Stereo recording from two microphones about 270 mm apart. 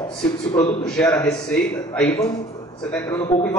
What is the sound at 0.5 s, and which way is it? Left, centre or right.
Speech, left.